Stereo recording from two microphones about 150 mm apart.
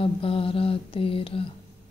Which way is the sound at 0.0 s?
40° left (ahead or behind).